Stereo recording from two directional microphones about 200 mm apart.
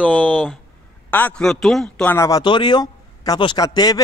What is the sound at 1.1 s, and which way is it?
Speech, 10° left (ahead or behind).